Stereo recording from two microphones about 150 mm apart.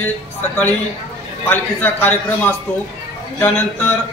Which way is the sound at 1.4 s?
15° left (ahead or behind).